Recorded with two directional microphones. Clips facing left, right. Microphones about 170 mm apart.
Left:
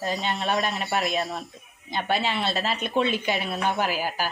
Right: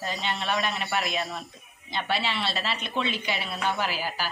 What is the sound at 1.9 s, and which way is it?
A woman's voice, 45° left (ahead or behind).